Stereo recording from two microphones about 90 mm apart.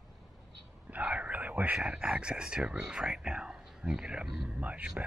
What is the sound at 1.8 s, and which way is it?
Speech, 10° right (ahead or behind).